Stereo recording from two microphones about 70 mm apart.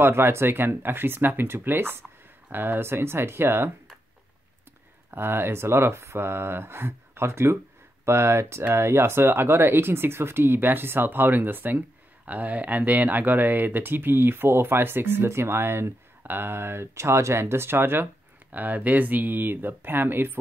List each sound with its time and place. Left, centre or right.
0.0 s speech: right
5.1 s speech: right